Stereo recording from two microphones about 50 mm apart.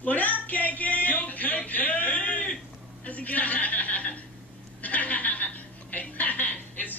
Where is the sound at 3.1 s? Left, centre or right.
Left.